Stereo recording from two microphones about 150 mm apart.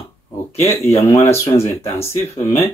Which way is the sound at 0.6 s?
20° left (ahead or behind).